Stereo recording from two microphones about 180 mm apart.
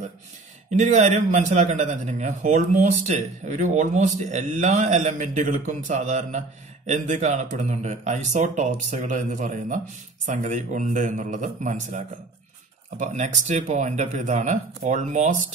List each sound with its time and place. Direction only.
0.7 s a man's voice: 40° right (ahead or behind)